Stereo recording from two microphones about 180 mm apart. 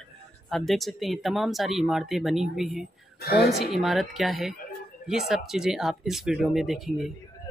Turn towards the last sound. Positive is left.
turn(degrees=0)  # may be behind; listen again after turning